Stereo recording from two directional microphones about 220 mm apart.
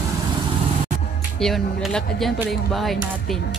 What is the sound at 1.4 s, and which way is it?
Speech, centre (ahead or behind).